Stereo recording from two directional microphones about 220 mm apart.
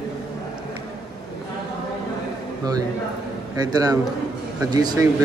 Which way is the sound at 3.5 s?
15° right (ahead or behind).